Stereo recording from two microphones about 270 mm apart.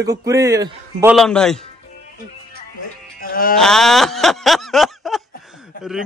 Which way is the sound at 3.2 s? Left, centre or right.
Left.